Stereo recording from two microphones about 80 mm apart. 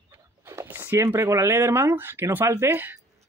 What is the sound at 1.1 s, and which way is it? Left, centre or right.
Speech, right.